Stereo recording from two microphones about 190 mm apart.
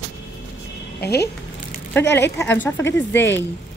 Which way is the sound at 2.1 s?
10° left (ahead or behind).